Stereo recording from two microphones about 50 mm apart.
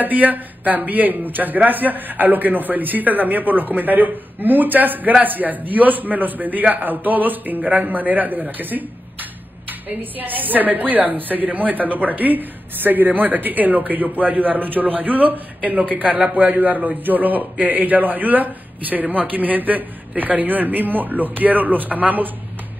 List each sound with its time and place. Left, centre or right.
0.0 s a woman's voice: right